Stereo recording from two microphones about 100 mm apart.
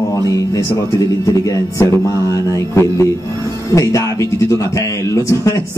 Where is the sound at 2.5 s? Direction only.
30° left (ahead or behind).